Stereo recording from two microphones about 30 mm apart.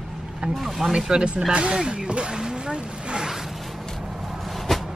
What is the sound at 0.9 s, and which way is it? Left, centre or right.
Speech, right.